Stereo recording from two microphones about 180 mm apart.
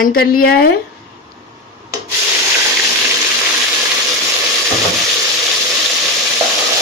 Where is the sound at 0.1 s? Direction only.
70° left (ahead or behind).